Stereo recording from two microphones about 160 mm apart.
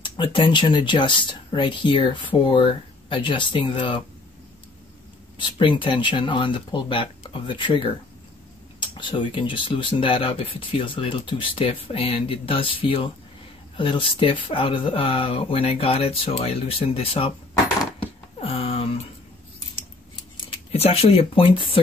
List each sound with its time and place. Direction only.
0.0 s speech: 30° left (ahead or behind)
5.4 s speech: 30° left (ahead or behind)
18.4 s a sound: 35° left (ahead or behind)
20.4 s speech: 40° left (ahead or behind)